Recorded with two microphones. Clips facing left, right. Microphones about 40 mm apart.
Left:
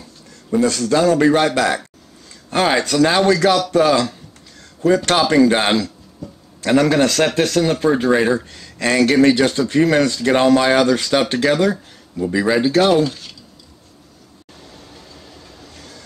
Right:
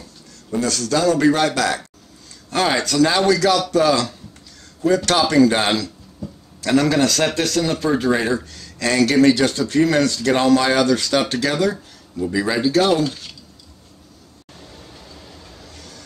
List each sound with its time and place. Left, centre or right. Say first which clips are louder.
0.7 s a man's voice: left 2 dB; left
6.2 s a sound: right 1 dB; centre
6.6 s a man's voice: left 2 dB; left
8.5 s a man's voice: left 2 dB; left
12.9 s speech: left 3 dB; centre
14.6 s train: even; centre
15.7 s train: left 1 dB; centre